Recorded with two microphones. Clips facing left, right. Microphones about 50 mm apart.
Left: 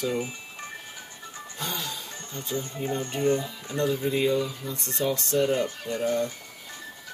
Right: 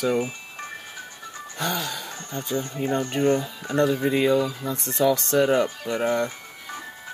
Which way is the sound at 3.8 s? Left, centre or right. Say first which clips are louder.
Right 4 dB; right.